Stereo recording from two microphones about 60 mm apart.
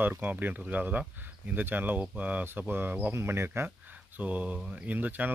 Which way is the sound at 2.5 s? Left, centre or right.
Right.